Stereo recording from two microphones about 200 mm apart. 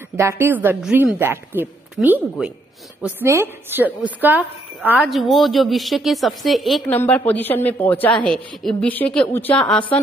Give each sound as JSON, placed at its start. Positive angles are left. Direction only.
{"t": 0.2, "sound": "a woman's voice", "side_deg": -10}